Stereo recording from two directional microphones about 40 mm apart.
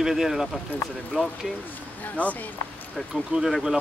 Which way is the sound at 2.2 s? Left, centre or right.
Left.